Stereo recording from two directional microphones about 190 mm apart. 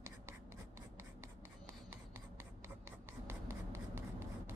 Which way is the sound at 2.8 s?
15° right (ahead or behind).